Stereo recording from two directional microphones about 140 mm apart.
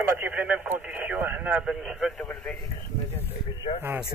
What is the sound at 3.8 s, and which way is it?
Speech, 15° right (ahead or behind).